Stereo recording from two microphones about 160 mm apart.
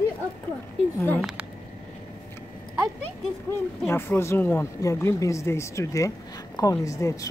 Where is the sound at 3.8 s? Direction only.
15° left (ahead or behind).